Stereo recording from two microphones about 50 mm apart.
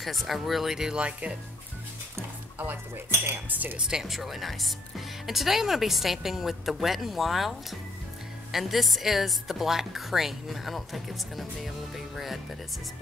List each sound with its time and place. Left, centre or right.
0.0 s speech: centre
0.9 s speech: right
3.4 s speech: right
3.7 s speech: centre